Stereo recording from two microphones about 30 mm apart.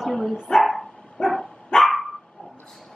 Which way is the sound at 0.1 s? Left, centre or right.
Centre.